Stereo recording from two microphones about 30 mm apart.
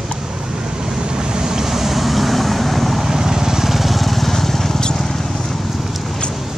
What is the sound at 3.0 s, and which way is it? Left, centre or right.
Lawn mower, centre.